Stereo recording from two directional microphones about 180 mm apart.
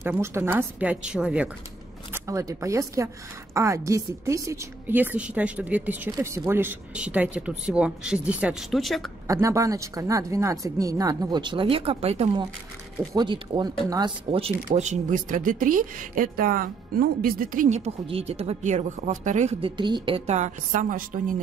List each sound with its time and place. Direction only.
0.0 s a woman's voice: 15° right (ahead or behind)
2.1 s a woman's voice: 15° right (ahead or behind); by 9.1 s centre (ahead or behind)
9.3 s speech: 15° right (ahead or behind)
14.7 s speech: 40° right (ahead or behind)
19.8 s a woman's voice: 25° right (ahead or behind); by 21.4 s 45° right (ahead or behind)